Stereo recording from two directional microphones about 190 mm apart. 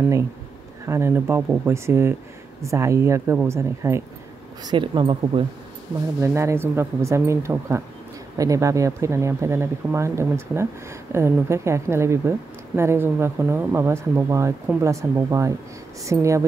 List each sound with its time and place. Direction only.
0.8 s speech: 15° right (ahead or behind)
4.6 s speech: 25° right (ahead or behind)
6.2 s speech: 15° right (ahead or behind)